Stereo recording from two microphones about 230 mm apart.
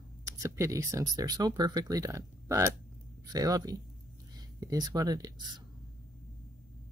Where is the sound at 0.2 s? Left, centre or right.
Centre.